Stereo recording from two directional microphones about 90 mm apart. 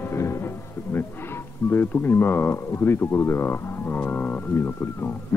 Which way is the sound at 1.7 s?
25° left (ahead or behind).